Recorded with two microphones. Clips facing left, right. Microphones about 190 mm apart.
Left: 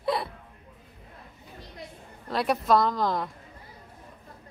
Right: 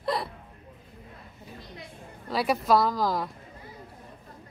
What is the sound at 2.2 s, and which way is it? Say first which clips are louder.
Speech: even; centre (ahead or behind).